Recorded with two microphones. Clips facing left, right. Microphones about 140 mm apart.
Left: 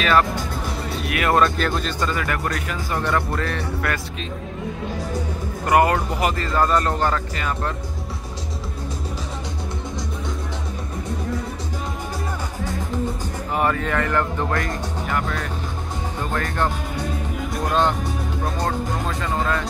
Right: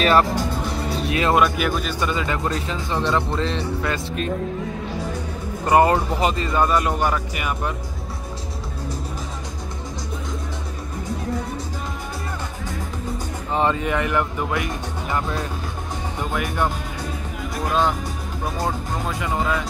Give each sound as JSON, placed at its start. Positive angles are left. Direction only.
{"t": 0.4, "sound": "music", "side_deg": 0}
{"t": 1.0, "sound": "speech", "side_deg": -25}
{"t": 1.3, "sound": "speech", "side_deg": -5}
{"t": 2.0, "sound": "speech", "side_deg": -20}
{"t": 5.7, "sound": "speech", "side_deg": -25}
{"t": 6.6, "sound": "speech", "side_deg": -5}
{"t": 13.5, "sound": "speech", "side_deg": -25}
{"t": 17.4, "sound": "music", "side_deg": 0}
{"t": 18.4, "sound": "speech", "side_deg": 0}